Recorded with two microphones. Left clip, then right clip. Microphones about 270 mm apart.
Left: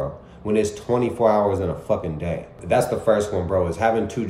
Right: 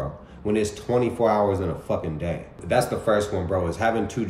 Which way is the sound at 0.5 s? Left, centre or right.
Centre.